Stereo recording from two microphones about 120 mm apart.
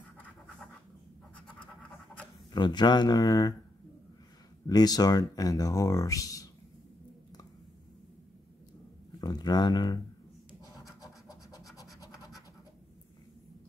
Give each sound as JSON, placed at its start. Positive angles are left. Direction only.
{"t": 2.5, "sound": "speech", "side_deg": 35}
{"t": 4.6, "sound": "speech", "side_deg": 35}
{"t": 9.2, "sound": "speech", "side_deg": 35}
{"t": 10.7, "sound": "scratch", "side_deg": 0}
{"t": 11.0, "sound": "scratch", "side_deg": 30}